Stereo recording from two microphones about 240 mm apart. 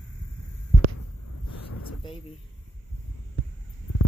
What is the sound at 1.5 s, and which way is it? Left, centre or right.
Vehicle, left.